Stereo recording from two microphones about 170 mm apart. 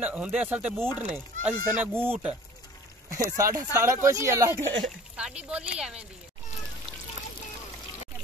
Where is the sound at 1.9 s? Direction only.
10° right (ahead or behind).